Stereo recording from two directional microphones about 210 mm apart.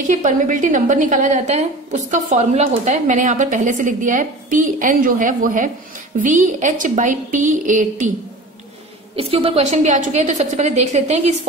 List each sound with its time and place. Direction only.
0.1 s a woman's voice: 40° right (ahead or behind)
9.1 s a woman's voice: 25° right (ahead or behind)